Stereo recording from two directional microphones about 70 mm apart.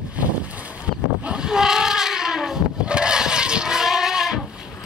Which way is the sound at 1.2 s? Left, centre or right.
Centre.